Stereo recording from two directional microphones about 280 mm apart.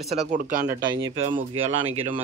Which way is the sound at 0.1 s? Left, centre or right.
Right.